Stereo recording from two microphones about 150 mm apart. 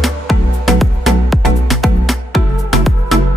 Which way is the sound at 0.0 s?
Centre (ahead or behind).